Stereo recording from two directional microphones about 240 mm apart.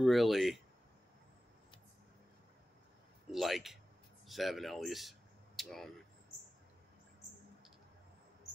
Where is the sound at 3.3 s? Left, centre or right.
Centre.